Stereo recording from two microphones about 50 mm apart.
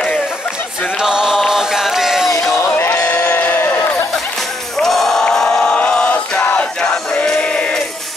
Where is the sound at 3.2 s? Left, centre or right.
Left.